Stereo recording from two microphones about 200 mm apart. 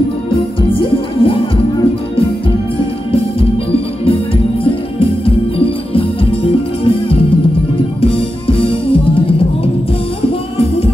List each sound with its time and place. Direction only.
0.6 s music: 25° left (ahead or behind)
3.1 s music: 30° left (ahead or behind)
5.2 s music: 25° left (ahead or behind)